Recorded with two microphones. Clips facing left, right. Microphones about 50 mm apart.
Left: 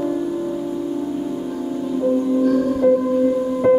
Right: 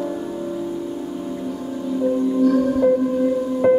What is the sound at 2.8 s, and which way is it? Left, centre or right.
Music, centre.